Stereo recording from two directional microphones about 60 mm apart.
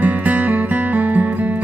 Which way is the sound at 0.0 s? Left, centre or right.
Right.